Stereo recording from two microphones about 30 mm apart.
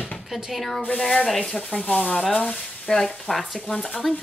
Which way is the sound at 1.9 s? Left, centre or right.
Left.